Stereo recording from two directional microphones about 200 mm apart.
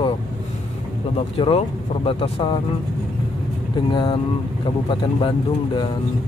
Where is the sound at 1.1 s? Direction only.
30° left (ahead or behind).